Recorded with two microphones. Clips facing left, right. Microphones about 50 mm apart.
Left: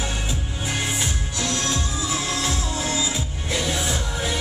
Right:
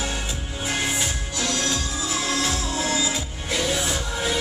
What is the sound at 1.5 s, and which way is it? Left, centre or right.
Music, left.